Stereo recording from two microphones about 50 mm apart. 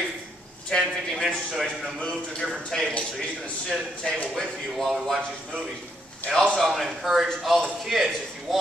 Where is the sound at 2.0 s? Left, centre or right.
Centre.